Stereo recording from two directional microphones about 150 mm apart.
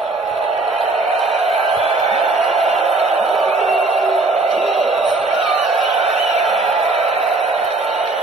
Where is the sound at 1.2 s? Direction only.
45° right (ahead or behind).